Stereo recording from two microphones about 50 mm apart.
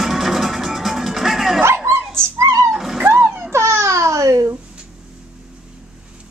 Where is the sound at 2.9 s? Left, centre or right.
Right.